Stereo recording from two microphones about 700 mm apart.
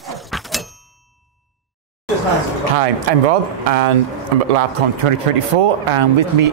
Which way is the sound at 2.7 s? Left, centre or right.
Right.